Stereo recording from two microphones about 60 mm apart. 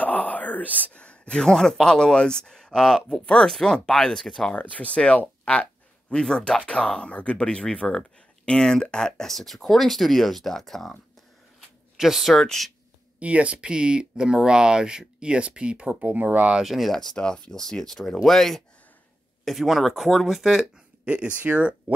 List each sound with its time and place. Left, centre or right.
0.0 s a sound: left
1.4 s speech: centre
2.7 s speech: centre
3.1 s speech: centre
4.6 s speech: left; by 11.0 s centre
12.0 s speech: centre
12.4 s speech: centre
13.2 s speech: right
16.0 s speech: right
16.5 s speech: centre
21.0 s speech: centre